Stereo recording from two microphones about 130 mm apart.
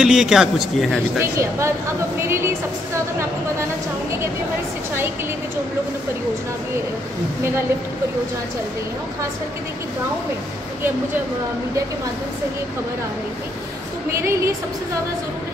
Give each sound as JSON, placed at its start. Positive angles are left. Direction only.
{"t": 0.0, "sound": "a man's voice", "side_deg": -5}
{"t": 1.2, "sound": "a woman's voice", "side_deg": -20}
{"t": 14.1, "sound": "a woman's voice", "side_deg": -20}